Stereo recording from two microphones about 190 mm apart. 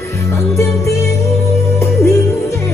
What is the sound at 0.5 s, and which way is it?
Music, 15° left (ahead or behind).